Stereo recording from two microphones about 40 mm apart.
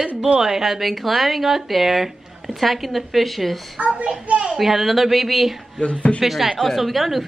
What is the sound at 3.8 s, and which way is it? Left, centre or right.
Speech, right.